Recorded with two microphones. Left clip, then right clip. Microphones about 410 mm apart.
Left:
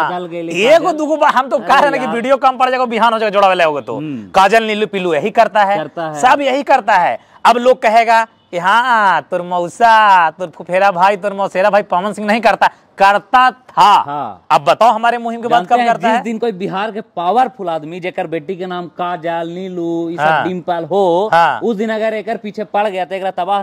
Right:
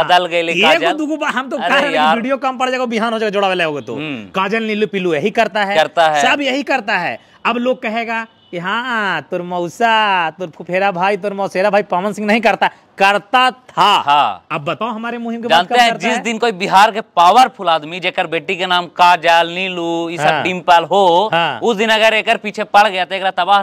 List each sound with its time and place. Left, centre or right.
0.2 s a man's voice: right
0.5 s a woman's voice: left
4.3 s a woman's voice: left
5.8 s a man's voice: right
6.2 s a woman's voice: left
14.0 s a man's voice: right
14.5 s speech: left
15.4 s a man's voice: right
20.2 s a woman's voice: left
20.4 s speech: right
21.3 s a woman's voice: left
21.6 s speech: right